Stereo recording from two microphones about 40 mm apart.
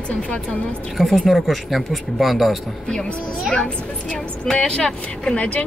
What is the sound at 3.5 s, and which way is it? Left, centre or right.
A woman's voice, left.